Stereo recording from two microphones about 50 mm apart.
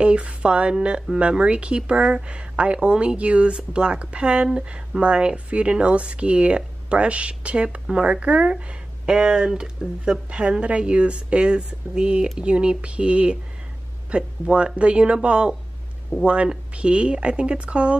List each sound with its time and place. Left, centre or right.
0.0 s speech: right